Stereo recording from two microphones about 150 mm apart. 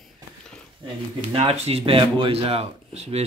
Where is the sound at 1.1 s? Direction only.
45° right (ahead or behind).